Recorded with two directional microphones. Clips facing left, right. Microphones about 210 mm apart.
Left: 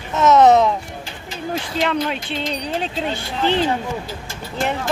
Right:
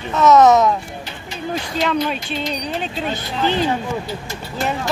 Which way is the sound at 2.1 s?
25° left (ahead or behind).